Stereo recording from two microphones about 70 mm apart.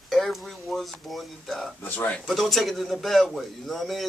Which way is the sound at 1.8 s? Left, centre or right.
Left.